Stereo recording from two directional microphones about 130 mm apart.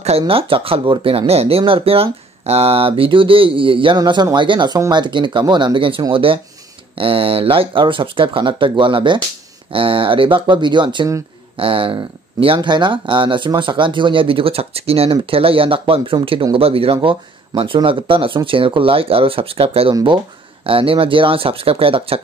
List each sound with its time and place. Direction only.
0.3 s speech: 45° right (ahead or behind)
19.9 s speech: 35° right (ahead or behind)
20.6 s speech: 45° right (ahead or behind)